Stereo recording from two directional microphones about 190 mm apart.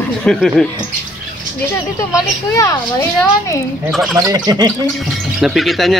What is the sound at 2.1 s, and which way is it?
Speech, 15° left (ahead or behind).